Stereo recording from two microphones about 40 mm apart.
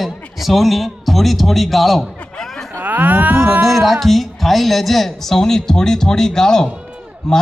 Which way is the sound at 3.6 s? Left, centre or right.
Centre.